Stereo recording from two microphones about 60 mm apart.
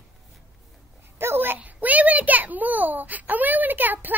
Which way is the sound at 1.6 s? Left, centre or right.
Right.